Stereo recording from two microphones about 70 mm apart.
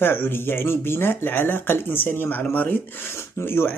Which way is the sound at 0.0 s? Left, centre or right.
Left.